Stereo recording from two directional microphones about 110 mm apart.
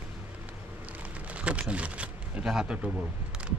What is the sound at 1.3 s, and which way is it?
Speech, 10° right (ahead or behind).